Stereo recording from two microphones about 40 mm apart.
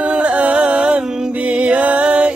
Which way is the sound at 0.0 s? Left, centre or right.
Right.